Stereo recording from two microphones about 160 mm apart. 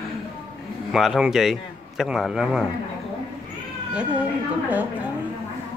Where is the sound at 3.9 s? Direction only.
10° right (ahead or behind).